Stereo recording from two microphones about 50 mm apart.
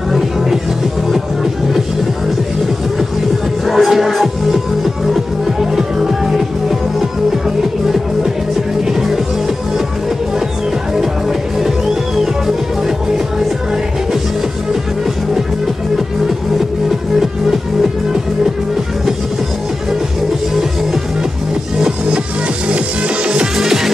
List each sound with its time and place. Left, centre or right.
0.1 s music: centre
3.6 s music: centre
11.0 s music: centre
22.7 s music: right
23.6 s music: centre